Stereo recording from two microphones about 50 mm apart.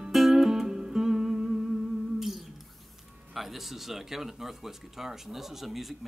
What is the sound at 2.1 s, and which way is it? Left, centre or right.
Humming, centre.